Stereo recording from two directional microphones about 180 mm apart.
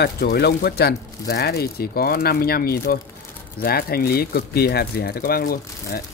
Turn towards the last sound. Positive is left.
turn(degrees=55)  # may be behind; listen again after turning